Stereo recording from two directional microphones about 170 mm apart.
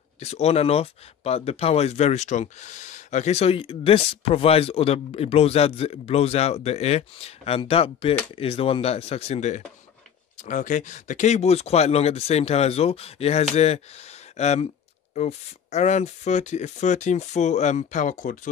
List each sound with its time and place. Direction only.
0.2 s speech: 40° left (ahead or behind)